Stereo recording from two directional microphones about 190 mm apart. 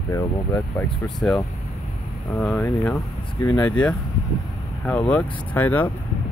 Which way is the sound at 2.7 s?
Centre (ahead or behind).